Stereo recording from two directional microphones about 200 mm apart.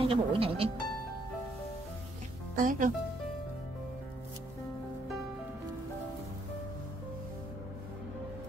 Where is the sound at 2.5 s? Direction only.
40° right (ahead or behind).